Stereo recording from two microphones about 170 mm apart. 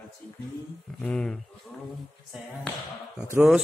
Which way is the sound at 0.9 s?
5° left (ahead or behind).